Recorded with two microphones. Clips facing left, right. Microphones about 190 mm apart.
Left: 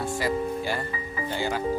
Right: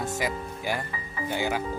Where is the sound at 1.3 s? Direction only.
10° right (ahead or behind).